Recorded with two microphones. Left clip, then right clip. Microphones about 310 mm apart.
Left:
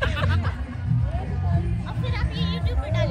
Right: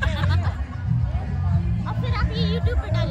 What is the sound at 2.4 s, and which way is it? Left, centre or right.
Music, right.